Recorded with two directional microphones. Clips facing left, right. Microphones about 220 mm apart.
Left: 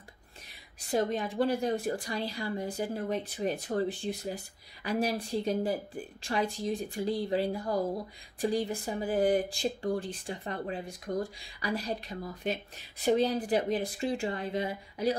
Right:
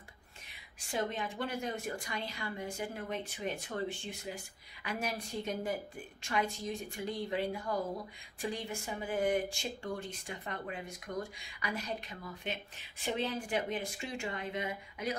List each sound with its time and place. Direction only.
0.5 s speech: 40° left (ahead or behind)